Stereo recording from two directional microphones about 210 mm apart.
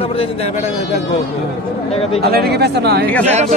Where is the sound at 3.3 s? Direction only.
30° right (ahead or behind).